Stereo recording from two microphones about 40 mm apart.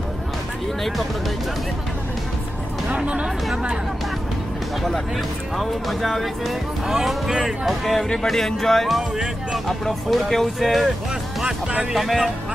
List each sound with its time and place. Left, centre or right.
5.6 s speech: centre
7.2 s speech: centre
7.6 s speech: centre
9.1 s speech: centre
9.7 s speech: centre
11.9 s speech: centre